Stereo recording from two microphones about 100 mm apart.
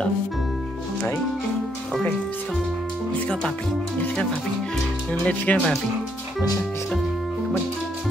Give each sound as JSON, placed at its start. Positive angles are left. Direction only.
{"t": 5.2, "sound": "speech", "side_deg": 15}